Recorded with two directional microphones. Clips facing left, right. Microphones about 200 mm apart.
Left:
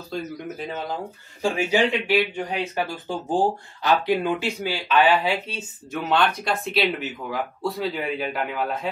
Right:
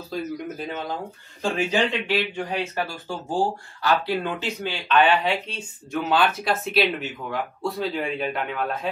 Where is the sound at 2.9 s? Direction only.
20° left (ahead or behind); by 8.9 s centre (ahead or behind).